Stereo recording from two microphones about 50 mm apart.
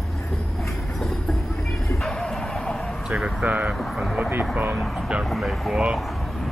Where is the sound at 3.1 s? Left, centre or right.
Centre.